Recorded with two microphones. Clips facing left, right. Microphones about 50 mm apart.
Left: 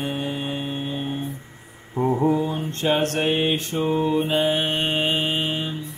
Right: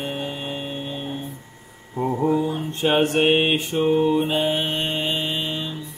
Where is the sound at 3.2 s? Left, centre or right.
Right.